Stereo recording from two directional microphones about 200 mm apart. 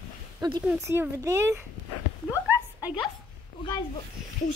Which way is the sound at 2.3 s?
10° right (ahead or behind).